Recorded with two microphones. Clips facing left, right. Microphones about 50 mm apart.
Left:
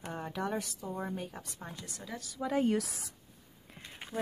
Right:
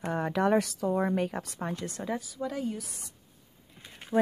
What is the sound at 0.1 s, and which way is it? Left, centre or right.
Speech, right.